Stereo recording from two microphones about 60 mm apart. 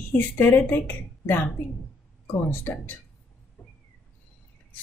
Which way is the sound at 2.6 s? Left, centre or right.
Left.